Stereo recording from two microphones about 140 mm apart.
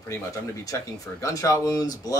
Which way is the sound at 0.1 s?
20° left (ahead or behind).